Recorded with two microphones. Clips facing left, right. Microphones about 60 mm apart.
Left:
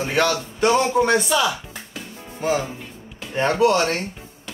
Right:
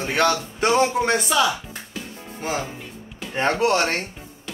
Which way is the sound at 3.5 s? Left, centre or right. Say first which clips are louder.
Left 4 dB; right.